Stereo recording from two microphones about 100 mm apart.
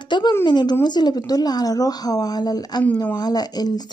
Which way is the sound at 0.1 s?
50° left (ahead or behind).